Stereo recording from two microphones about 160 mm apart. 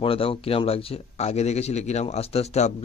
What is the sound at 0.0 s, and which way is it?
Speech, 35° left (ahead or behind).